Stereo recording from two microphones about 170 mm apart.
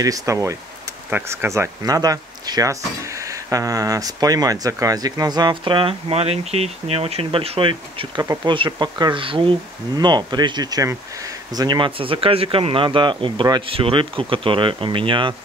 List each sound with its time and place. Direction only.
0.0 s speech: 20° right (ahead or behind)
8.2 s speech: 20° right (ahead or behind)